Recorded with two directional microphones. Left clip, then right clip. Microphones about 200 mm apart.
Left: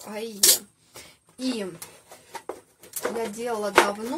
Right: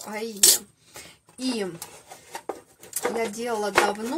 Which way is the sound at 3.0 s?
30° right (ahead or behind).